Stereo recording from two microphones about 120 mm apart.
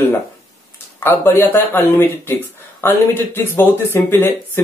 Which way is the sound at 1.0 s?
20° left (ahead or behind).